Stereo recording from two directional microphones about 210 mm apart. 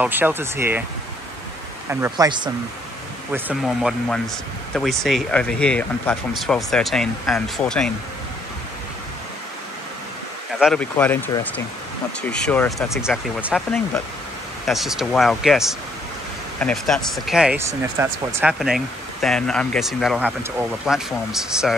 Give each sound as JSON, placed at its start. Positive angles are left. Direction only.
{"t": 0.0, "sound": "speech", "side_deg": -10}
{"t": 1.9, "sound": "speech", "side_deg": -10}
{"t": 3.3, "sound": "speech", "side_deg": -5}
{"t": 10.6, "sound": "speech", "side_deg": 5}
{"t": 14.7, "sound": "speech", "side_deg": 0}